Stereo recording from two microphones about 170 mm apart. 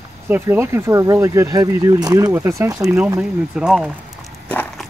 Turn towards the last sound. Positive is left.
turn(degrees=10)  # may be behind; listen again after turning